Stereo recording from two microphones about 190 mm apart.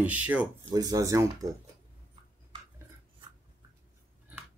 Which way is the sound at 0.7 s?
20° right (ahead or behind).